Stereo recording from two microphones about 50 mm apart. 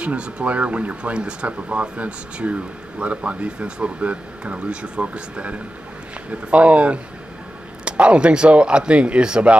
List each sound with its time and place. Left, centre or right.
0.0 s speech: right